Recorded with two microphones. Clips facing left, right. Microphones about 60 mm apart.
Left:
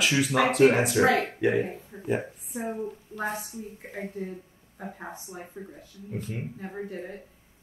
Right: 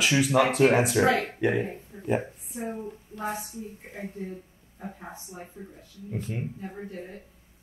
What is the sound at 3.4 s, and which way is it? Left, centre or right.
A woman's voice, left.